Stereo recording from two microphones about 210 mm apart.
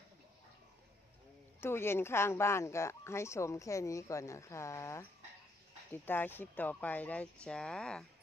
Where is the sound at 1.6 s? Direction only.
10° left (ahead or behind).